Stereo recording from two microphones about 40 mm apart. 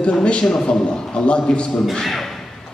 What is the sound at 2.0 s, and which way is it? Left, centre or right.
Speech, centre.